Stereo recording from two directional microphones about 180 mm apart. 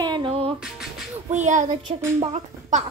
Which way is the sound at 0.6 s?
Centre (ahead or behind).